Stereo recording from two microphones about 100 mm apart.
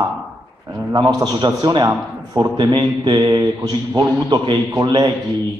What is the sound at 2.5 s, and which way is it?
A man's voice, 50° right (ahead or behind).